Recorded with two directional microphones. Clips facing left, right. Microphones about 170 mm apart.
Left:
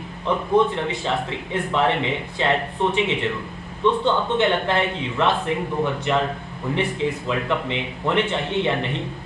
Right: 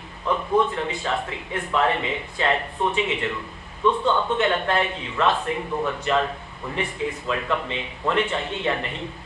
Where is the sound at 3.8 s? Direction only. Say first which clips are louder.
Left 1 dB; 20° left (ahead or behind).